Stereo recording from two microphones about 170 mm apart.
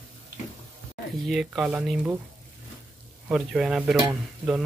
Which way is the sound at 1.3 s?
Centre (ahead or behind).